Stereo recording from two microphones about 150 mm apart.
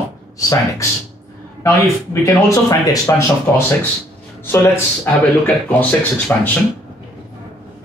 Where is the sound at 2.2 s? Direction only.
20° left (ahead or behind).